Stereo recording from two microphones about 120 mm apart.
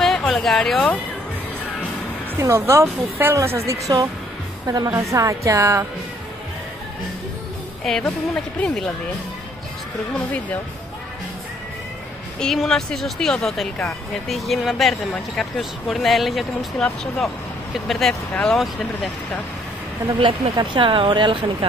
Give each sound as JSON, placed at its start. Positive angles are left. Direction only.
{"t": 0.3, "sound": "speech", "side_deg": 5}
{"t": 2.3, "sound": "speech", "side_deg": -25}
{"t": 7.8, "sound": "speech", "side_deg": 0}
{"t": 12.4, "sound": "speech", "side_deg": 5}
{"t": 20.2, "sound": "speech", "side_deg": -45}